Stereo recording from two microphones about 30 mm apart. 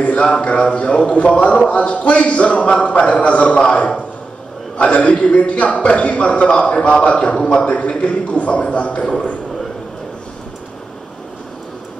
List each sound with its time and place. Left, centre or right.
0.0 s speech: left
0.4 s speech: left
4.7 s a man's voice: left
7.5 s speech: left